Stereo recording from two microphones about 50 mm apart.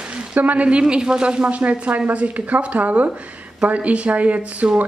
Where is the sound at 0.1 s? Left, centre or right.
Right.